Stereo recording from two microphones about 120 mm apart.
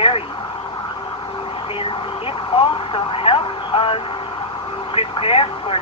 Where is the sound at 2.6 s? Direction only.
50° left (ahead or behind).